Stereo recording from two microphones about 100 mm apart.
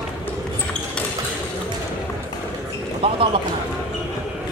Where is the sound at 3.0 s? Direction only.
70° right (ahead or behind).